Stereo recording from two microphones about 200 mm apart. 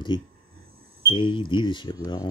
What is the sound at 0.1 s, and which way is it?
Speech, 25° left (ahead or behind).